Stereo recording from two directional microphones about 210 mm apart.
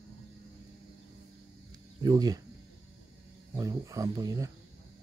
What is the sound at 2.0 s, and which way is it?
Speech, 20° right (ahead or behind).